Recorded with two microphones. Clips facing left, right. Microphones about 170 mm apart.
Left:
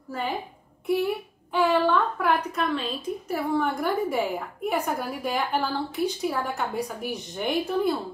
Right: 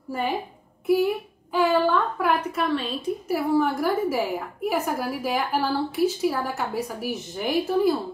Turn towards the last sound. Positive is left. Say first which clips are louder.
# right 3 dB
turn(degrees=-5)  # may be behind; listen again after turning